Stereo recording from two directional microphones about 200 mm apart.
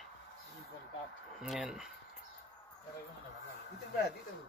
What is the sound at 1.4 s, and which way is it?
Speech, 5° right (ahead or behind).